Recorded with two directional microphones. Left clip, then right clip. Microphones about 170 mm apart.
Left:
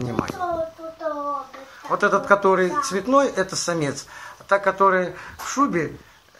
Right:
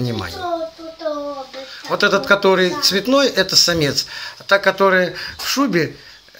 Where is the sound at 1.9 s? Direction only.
50° right (ahead or behind).